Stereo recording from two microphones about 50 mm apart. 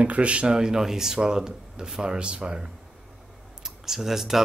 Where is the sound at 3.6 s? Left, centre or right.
Centre.